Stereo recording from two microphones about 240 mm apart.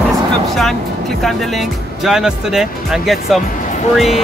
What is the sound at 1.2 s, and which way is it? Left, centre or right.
Speech, centre.